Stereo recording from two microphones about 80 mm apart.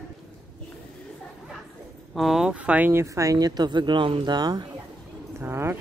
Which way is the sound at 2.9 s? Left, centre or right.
Right.